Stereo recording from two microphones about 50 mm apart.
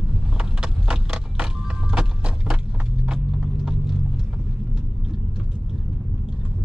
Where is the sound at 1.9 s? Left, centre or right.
Centre.